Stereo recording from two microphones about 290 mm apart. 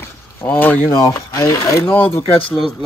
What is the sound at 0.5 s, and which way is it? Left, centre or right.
Speech, centre.